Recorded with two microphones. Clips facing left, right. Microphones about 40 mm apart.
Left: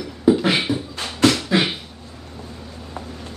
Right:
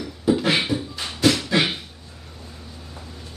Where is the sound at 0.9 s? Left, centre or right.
Left.